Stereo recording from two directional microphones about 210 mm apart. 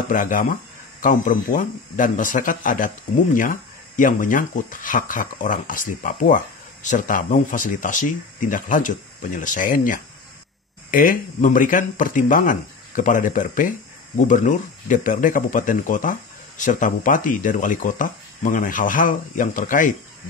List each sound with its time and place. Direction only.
0.1 s speech: 40° left (ahead or behind)